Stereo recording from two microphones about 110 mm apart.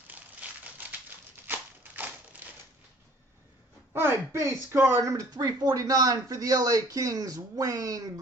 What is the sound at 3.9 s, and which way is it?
Speech, 20° right (ahead or behind).